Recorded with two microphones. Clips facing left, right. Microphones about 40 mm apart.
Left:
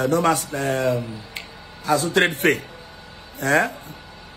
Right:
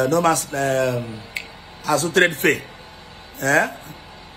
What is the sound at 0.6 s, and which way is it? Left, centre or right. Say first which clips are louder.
Speech: right 2 dB; right.